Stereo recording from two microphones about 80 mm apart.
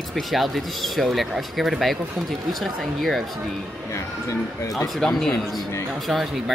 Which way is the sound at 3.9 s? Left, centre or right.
Left.